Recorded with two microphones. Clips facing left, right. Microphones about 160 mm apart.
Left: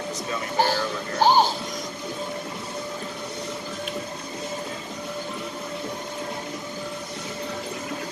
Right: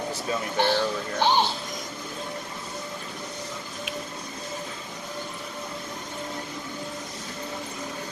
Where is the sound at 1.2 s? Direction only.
40° left (ahead or behind).